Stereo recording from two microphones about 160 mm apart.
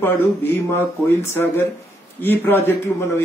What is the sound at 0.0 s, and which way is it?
Speech, 15° left (ahead or behind).